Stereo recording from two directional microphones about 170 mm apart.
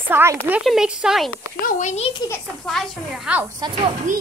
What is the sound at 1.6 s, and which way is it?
Speech, 45° left (ahead or behind).